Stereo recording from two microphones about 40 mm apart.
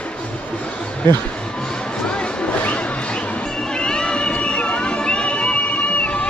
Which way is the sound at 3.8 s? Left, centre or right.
Centre.